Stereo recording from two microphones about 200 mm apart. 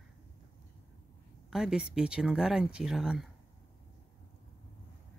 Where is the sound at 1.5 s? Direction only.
5° right (ahead or behind).